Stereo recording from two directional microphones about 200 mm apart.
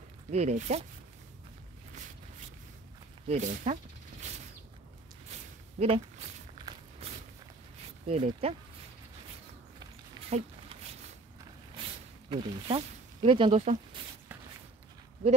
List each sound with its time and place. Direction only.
0.3 s speech: 35° right (ahead or behind)
3.3 s speech: 35° right (ahead or behind)
5.3 s a sound: 35° right (ahead or behind)
5.8 s speech: 30° right (ahead or behind)
6.6 s walk: 20° right (ahead or behind)
8.1 s speech: 30° right (ahead or behind)
11.8 s a sound: 25° right (ahead or behind)
12.3 s speech: 25° right (ahead or behind)